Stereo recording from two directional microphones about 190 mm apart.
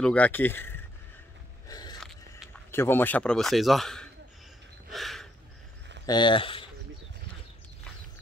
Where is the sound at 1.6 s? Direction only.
20° left (ahead or behind).